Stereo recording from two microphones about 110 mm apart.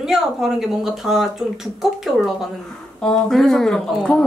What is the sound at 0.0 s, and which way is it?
Speech, 5° right (ahead or behind).